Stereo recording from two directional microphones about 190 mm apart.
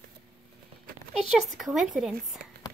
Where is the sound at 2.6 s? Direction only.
20° left (ahead or behind).